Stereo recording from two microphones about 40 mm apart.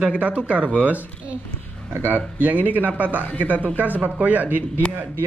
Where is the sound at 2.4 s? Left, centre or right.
Right.